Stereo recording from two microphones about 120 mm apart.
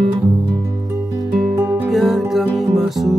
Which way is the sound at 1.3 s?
Centre (ahead or behind).